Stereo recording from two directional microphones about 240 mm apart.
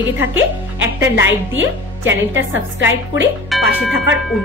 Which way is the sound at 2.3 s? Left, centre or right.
Right.